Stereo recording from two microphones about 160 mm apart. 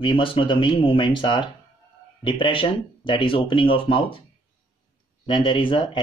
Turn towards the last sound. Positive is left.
turn(degrees=35)  # may be behind; listen again after turning